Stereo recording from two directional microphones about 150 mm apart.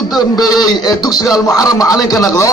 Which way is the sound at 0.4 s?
25° left (ahead or behind).